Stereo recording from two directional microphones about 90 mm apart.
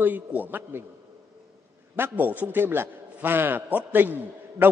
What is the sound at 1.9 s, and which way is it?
A man's voice, 20° right (ahead or behind).